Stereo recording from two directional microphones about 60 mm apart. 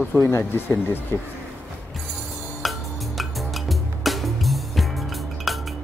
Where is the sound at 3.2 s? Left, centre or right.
Centre.